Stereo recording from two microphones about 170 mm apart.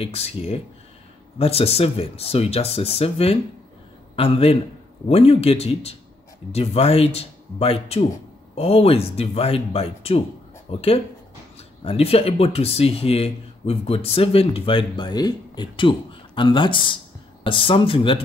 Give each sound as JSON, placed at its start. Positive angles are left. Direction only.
{"t": 0.0, "sound": "a man's voice", "side_deg": 35}